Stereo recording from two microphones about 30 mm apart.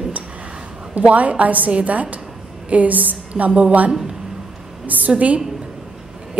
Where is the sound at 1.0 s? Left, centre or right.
Right.